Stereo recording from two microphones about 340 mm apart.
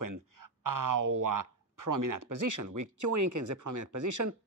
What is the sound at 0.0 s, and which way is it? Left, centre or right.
Speech, right.